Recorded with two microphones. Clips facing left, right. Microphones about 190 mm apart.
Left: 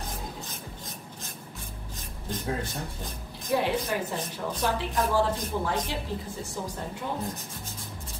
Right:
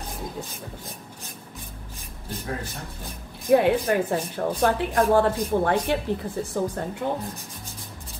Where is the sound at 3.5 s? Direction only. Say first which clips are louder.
Right 8 dB; 55° right (ahead or behind).